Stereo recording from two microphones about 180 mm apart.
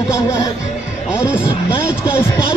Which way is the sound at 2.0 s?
15° left (ahead or behind).